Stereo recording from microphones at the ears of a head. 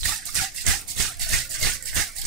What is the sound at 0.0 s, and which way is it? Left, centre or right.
Music, right.